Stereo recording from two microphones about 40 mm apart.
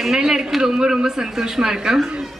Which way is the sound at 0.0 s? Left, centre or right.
Centre.